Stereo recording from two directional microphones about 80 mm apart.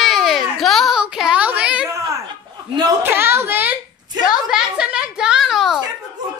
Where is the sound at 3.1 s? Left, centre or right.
Right.